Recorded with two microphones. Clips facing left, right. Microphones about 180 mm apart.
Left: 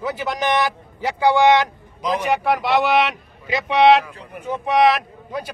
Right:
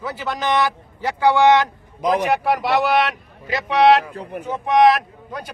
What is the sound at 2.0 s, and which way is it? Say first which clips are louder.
Speech: right 3 dB; 50° right (ahead or behind).